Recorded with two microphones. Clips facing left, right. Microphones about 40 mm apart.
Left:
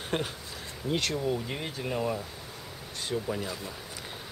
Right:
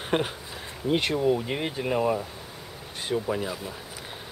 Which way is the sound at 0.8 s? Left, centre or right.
Right.